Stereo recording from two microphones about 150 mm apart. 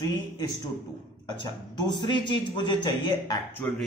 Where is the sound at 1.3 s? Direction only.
30° left (ahead or behind).